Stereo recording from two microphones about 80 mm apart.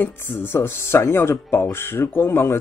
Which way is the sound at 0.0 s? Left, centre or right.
Left.